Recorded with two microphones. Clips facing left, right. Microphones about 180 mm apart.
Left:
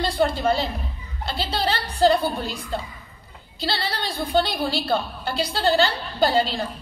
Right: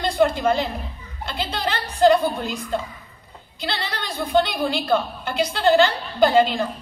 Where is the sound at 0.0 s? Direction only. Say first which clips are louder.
Right 2 dB; 35° left (ahead or behind).